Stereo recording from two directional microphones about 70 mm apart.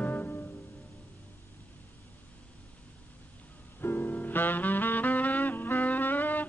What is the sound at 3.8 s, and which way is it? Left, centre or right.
Saxophone, left.